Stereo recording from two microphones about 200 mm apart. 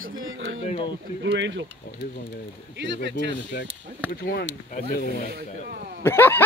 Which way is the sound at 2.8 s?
65° right (ahead or behind).